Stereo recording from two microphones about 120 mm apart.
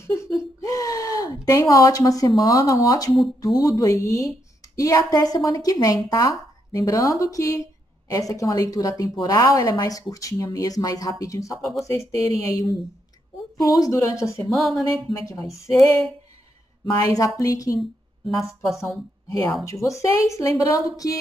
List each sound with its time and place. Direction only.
0.0 s a woman's voice: 25° left (ahead or behind)
11.5 s speech: centre (ahead or behind)
11.8 s speech: 25° left (ahead or behind)
14.5 s speech: centre (ahead or behind)
15.2 s speech: 25° left (ahead or behind)
15.7 s speech: centre (ahead or behind)
16.9 s speech: 25° left (ahead or behind)
18.3 s speech: centre (ahead or behind)
19.6 s speech: 25° left (ahead or behind)